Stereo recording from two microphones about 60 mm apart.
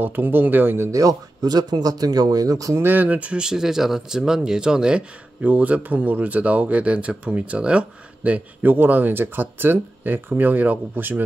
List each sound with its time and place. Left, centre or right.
0.0 s speech: right
0.9 s speech: right
2.7 s speech: right